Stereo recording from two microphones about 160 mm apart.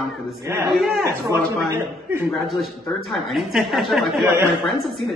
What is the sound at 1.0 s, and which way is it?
Speech, 15° right (ahead or behind).